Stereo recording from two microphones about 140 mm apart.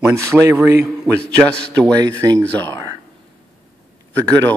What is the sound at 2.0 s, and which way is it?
Speech, 25° right (ahead or behind).